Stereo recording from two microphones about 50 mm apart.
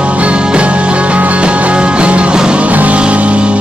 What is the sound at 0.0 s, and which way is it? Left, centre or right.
Music, right.